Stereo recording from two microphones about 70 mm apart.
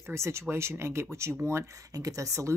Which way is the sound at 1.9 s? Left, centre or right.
Right.